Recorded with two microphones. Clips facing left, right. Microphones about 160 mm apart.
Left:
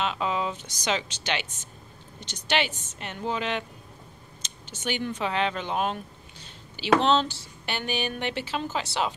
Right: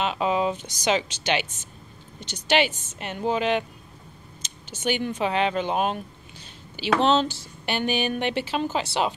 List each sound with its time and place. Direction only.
0.0 s speech: 15° right (ahead or behind)